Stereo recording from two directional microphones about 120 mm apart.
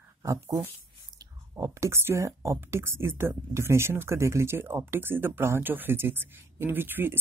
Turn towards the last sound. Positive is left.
turn(degrees=-15)  # may be behind; listen again after turning